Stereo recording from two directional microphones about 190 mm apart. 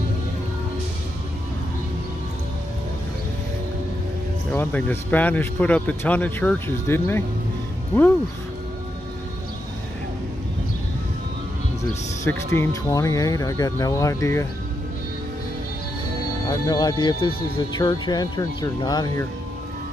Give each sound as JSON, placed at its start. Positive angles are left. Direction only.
{"t": 4.5, "sound": "speech", "side_deg": 10}
{"t": 12.3, "sound": "speech", "side_deg": 15}
{"t": 16.4, "sound": "speech", "side_deg": 20}